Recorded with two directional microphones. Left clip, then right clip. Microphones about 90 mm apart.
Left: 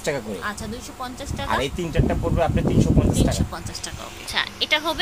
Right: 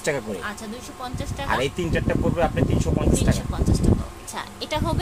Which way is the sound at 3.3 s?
20° left (ahead or behind).